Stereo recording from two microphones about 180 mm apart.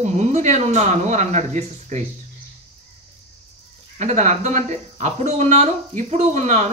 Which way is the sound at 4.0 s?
40° right (ahead or behind).